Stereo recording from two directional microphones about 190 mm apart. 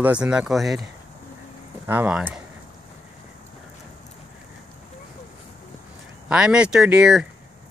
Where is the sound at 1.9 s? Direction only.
5° right (ahead or behind).